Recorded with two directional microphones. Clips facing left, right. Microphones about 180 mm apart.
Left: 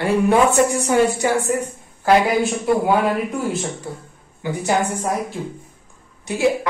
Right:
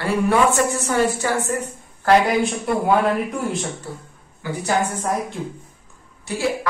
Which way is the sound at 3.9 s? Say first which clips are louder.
Left 2 dB; 15° left (ahead or behind).